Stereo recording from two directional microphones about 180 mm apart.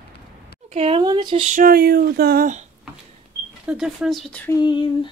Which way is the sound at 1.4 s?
50° right (ahead or behind).